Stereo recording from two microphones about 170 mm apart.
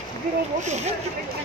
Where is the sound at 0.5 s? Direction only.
40° right (ahead or behind).